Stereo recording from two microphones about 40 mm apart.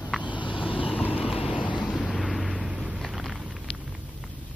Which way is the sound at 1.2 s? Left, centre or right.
Centre.